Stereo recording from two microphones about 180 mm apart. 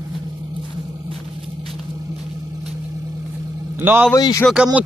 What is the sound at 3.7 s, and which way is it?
Speech, 10° right (ahead or behind).